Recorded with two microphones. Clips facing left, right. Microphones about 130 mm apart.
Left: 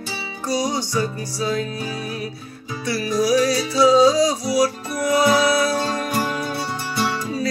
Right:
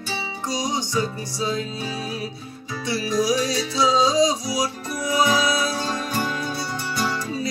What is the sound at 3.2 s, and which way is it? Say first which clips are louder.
Music: left 8 dB; 25° right (ahead or behind).